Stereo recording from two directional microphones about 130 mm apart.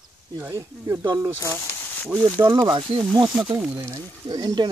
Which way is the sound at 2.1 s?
10° right (ahead or behind).